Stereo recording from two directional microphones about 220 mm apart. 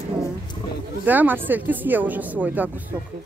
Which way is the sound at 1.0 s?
10° right (ahead or behind).